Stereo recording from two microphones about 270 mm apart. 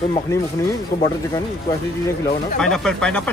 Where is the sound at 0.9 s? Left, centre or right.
Left.